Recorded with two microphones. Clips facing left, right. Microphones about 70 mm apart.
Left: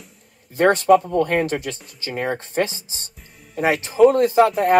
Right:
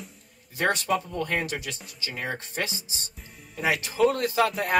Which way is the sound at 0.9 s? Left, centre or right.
Left.